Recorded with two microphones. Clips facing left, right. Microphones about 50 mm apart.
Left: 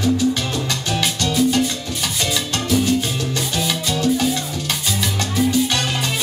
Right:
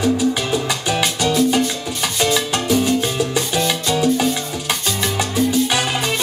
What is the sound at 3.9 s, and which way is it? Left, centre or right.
Music, centre.